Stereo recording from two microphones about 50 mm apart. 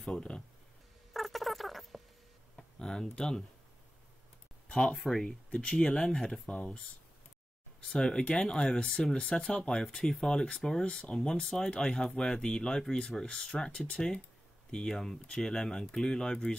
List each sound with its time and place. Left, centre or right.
0.0 s speech: centre
1.1 s rodents: centre
2.5 s a sound: centre
4.6 s speech: centre
5.2 s speech: centre
6.4 s speech: left
7.9 s speech: centre